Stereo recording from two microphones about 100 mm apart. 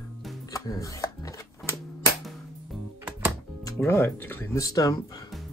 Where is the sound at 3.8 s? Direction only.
25° left (ahead or behind).